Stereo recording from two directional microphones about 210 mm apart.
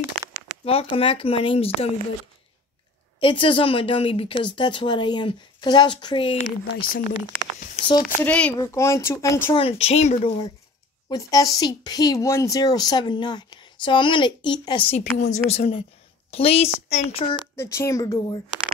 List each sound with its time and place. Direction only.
0.7 s speech: 25° left (ahead or behind)
3.2 s speech: 25° left (ahead or behind)
6.8 s speech: 40° left (ahead or behind)
7.2 s speech: 20° left (ahead or behind)
8.2 s speech: 5° left (ahead or behind); by 10.3 s 30° left (ahead or behind)
11.1 s a woman's voice: 15° left (ahead or behind)
17.6 s speech: 15° left (ahead or behind)